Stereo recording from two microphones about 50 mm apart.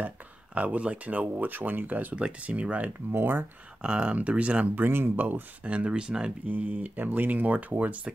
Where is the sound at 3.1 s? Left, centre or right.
Right.